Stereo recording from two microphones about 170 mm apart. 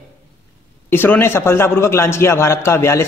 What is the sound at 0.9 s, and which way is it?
Speech, 15° left (ahead or behind).